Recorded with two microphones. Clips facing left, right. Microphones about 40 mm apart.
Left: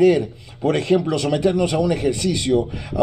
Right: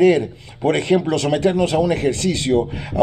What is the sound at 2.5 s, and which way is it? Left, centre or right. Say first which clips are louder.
Speech: right 1 dB; right.